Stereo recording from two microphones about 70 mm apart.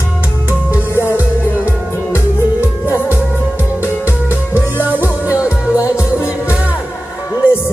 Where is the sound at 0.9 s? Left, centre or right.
Left.